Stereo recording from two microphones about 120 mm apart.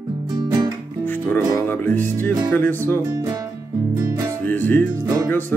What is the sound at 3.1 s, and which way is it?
Speech, 35° right (ahead or behind).